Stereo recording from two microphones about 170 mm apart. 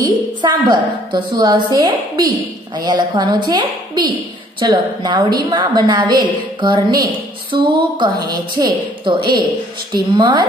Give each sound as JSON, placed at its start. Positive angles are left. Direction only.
{"t": 0.0, "sound": "a woman's voice", "side_deg": -25}